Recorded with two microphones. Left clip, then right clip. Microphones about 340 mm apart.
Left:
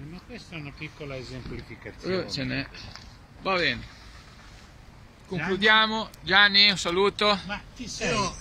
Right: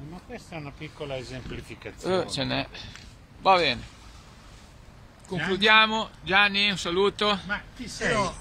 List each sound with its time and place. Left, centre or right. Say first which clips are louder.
1.1 s speech: right 3 dB; right
2.0 s speech: right 3 dB; centre
5.3 s speech: right 1 dB; centre